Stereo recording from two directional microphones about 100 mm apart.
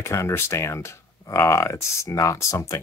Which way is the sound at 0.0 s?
25° left (ahead or behind).